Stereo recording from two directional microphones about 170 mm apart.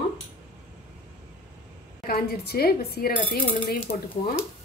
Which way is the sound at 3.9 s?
50° left (ahead or behind).